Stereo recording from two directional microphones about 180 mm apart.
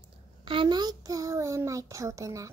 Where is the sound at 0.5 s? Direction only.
25° right (ahead or behind).